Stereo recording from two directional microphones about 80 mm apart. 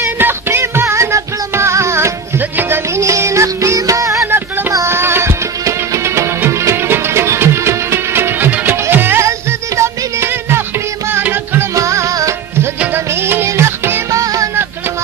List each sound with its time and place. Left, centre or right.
0.0 s music: right
3.0 s music: right
14.2 s music: right